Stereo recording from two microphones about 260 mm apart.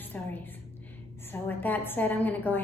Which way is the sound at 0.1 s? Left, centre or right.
Centre.